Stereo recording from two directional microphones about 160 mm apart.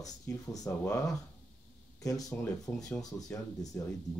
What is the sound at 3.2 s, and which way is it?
Speech, 20° left (ahead or behind).